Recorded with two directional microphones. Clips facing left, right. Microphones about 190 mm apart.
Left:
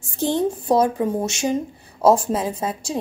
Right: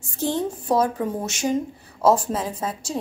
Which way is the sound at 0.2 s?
15° left (ahead or behind).